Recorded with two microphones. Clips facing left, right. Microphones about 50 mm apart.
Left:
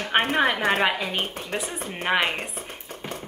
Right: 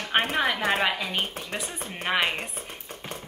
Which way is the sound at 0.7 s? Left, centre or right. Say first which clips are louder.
Left 2 dB; centre.